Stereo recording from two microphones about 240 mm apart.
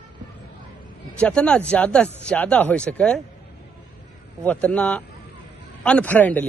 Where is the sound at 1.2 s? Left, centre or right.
Centre.